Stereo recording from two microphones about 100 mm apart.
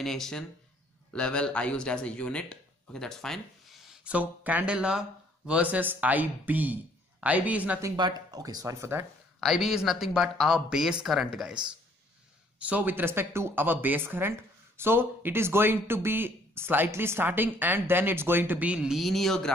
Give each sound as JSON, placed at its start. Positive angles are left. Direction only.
{"t": 0.0, "sound": "speech", "side_deg": 5}
{"t": 3.9, "sound": "speech", "side_deg": -10}
{"t": 7.9, "sound": "speech", "side_deg": -40}
{"t": 9.4, "sound": "speech", "side_deg": 0}
{"t": 12.5, "sound": "speech", "side_deg": -15}